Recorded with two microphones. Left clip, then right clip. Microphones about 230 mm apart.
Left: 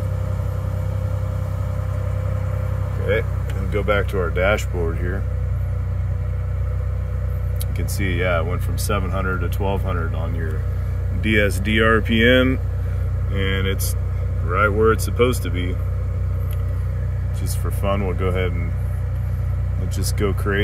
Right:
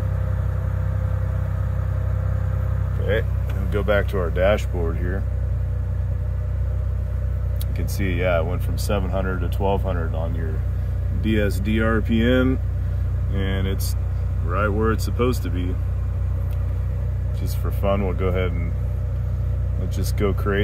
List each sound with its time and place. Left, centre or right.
3.7 s speech: centre
7.8 s speech: centre
11.2 s speech: right
13.3 s speech: centre
17.8 s speech: centre
20.0 s speech: centre